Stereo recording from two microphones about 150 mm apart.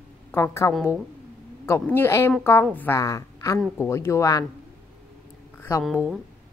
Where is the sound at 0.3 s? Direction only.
20° left (ahead or behind).